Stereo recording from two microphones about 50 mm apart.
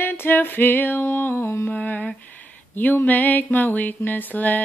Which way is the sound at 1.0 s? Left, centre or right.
Left.